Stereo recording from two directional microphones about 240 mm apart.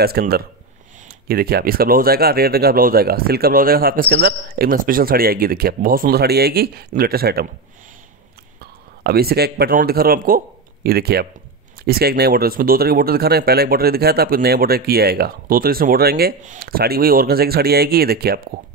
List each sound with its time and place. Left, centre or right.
0.0 s speech: right
9.0 s speech: right